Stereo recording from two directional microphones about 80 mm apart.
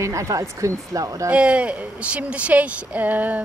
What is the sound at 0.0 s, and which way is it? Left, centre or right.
Speech, right.